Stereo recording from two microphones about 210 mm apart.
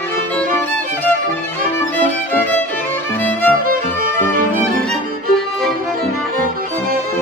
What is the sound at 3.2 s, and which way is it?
Music, 10° left (ahead or behind).